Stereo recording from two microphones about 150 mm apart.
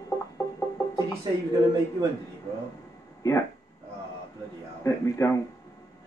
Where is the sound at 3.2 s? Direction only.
20° left (ahead or behind).